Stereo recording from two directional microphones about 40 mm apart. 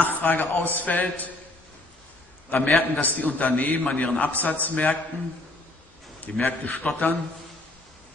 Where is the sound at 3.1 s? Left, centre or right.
Left.